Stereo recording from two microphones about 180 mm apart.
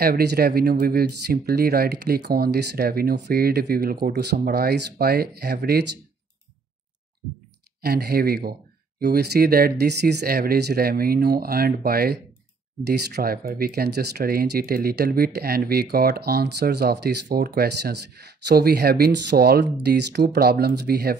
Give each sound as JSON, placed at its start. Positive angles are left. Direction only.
{"t": 0.0, "sound": "speech", "side_deg": -60}
{"t": 7.8, "sound": "speech", "side_deg": -60}